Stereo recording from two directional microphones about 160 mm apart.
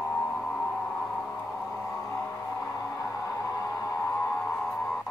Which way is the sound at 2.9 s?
20° left (ahead or behind).